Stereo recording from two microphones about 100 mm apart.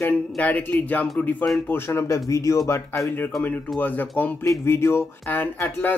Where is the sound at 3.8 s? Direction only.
20° left (ahead or behind).